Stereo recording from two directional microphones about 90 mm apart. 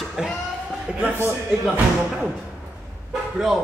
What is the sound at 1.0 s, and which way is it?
Speech, 25° right (ahead or behind).